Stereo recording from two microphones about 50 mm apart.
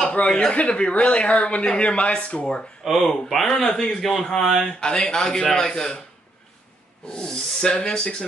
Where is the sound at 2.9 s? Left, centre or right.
Centre.